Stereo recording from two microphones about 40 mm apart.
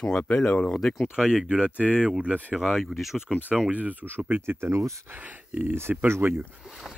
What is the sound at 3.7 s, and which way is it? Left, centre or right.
Speech, right.